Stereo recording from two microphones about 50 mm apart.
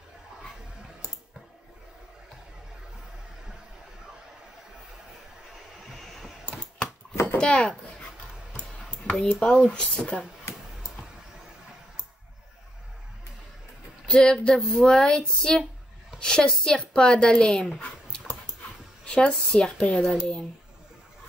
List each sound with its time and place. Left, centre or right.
7.3 s speech: centre
9.1 s speech: centre
9.5 s speech: left
14.0 s a woman's voice: centre
17.7 s a sound: centre
19.0 s speech: centre